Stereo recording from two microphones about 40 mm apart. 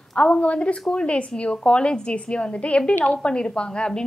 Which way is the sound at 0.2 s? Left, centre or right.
Left.